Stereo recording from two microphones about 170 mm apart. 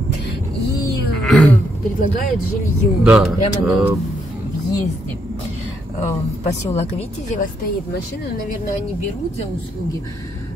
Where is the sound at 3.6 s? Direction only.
5° right (ahead or behind).